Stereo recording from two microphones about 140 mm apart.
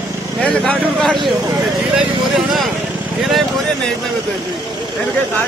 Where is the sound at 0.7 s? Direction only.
5° left (ahead or behind).